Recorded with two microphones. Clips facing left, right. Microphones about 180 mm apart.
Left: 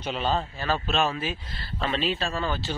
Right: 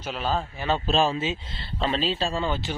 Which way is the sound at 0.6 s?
20° right (ahead or behind).